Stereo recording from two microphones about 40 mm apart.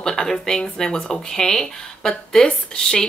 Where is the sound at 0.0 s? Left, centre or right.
Centre.